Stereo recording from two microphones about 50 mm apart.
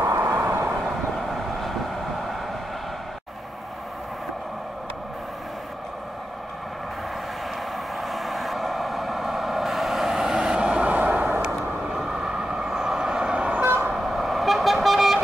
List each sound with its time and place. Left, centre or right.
0.0 s vehicle: right
8.0 s vehicle: centre
10.9 s vehicle: right
12.0 s vehicle: centre
13.9 s vehicle: centre